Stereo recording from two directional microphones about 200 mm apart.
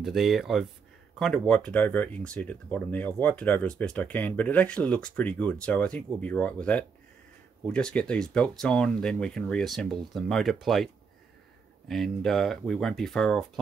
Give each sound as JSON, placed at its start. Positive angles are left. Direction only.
{"t": 0.0, "sound": "speech", "side_deg": 0}
{"t": 11.9, "sound": "speech", "side_deg": 0}